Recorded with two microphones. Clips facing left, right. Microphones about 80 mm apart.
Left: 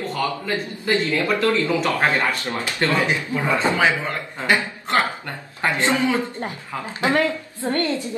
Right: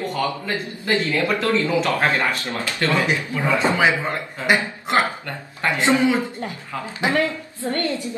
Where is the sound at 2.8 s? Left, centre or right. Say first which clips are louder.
Even; left.